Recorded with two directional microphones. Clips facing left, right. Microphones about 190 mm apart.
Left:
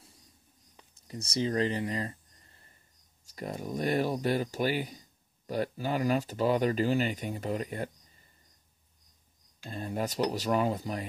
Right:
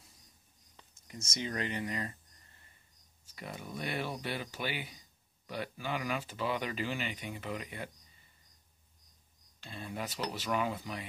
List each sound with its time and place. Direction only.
1.0 s speech: 35° left (ahead or behind)
9.7 s speech: 40° left (ahead or behind)